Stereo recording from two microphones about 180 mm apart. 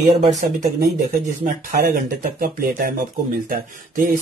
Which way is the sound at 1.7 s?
50° right (ahead or behind).